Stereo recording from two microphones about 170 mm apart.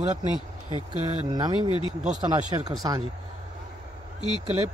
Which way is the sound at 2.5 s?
25° right (ahead or behind).